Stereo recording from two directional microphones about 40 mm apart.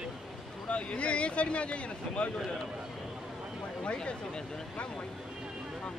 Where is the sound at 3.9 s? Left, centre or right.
Centre.